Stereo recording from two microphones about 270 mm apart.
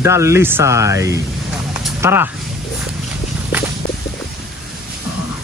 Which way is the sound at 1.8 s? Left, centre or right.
Centre.